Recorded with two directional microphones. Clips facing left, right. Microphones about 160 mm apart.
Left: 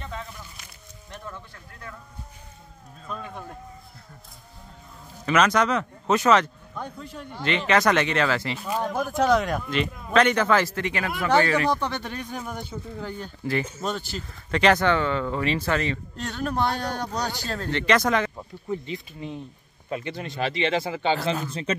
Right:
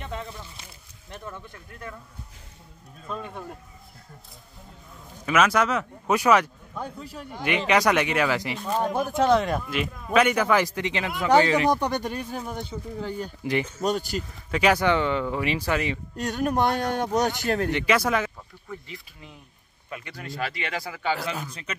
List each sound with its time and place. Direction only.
0.0 s a sound: 25° right (ahead or behind)
5.2 s speech: 5° right (ahead or behind)
8.5 s speech: 10° left (ahead or behind)
13.2 s speech: 15° right (ahead or behind)
16.6 s speech: 50° right (ahead or behind)
17.0 s speech: 20° right (ahead or behind)
17.6 s speech: 10° right (ahead or behind)
18.7 s speech: 20° left (ahead or behind)